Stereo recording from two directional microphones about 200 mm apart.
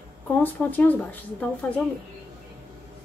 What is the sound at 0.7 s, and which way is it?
Speech, 10° left (ahead or behind).